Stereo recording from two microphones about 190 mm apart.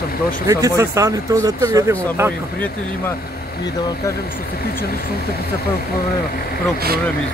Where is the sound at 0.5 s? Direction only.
15° right (ahead or behind).